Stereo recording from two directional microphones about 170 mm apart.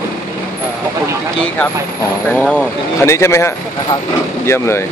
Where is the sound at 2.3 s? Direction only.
10° left (ahead or behind).